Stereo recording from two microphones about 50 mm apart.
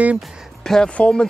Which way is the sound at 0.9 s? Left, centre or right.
Left.